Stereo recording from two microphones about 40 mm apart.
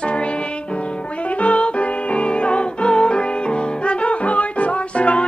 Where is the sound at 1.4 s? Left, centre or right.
Left.